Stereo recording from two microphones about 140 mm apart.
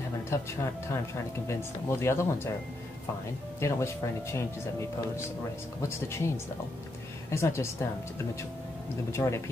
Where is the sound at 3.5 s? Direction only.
20° left (ahead or behind).